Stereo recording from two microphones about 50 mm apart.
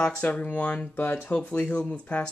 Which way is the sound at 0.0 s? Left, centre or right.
Left.